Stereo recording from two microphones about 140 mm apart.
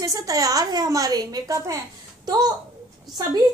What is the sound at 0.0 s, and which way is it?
A woman's voice, 25° right (ahead or behind).